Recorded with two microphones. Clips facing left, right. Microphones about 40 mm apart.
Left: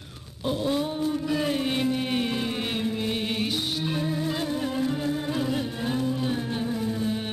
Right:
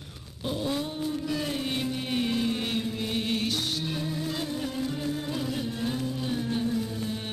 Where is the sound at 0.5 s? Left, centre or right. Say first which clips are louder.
Left 4 dB; centre.